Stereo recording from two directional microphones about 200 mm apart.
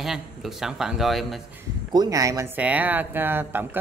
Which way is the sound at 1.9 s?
20° right (ahead or behind).